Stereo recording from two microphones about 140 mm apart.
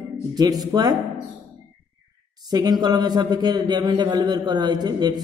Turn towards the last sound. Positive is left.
turn(degrees=-30)  # may be behind; listen again after turning